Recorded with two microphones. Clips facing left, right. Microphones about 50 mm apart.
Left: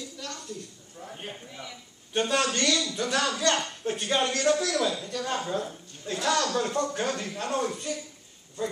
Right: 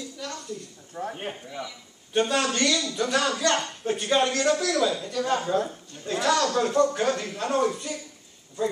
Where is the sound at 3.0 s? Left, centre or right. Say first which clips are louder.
Right 3 dB; right.